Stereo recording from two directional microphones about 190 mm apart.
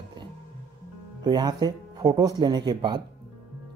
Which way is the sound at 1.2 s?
20° right (ahead or behind).